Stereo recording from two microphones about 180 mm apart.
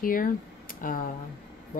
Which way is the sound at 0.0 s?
50° left (ahead or behind).